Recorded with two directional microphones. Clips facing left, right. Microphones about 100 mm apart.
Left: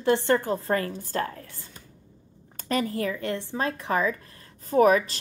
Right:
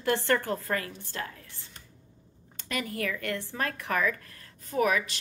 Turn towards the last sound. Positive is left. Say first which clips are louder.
# left 7 dB
turn(degrees=35)  # may be behind; listen again after turning